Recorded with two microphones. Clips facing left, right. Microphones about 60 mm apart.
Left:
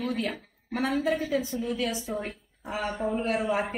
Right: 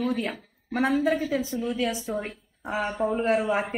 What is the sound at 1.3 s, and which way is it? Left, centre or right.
Speech, right.